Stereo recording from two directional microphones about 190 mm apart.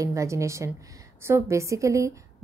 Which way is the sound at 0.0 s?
15° right (ahead or behind).